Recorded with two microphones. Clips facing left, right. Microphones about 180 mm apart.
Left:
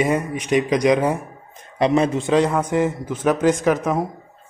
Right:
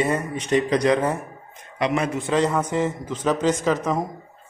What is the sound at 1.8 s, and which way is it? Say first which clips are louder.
Speech: left 6 dB; 30° left (ahead or behind).